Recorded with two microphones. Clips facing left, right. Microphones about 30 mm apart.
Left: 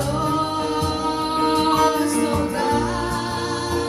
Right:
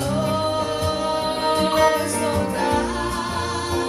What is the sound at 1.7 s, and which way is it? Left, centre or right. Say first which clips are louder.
Music: even; right.